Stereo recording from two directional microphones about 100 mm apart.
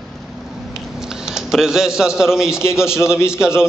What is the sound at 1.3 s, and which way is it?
A man's voice, 5° right (ahead or behind).